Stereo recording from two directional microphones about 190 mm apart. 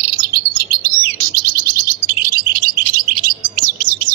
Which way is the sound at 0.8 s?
50° right (ahead or behind).